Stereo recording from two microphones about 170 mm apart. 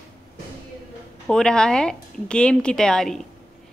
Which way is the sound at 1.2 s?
5° left (ahead or behind).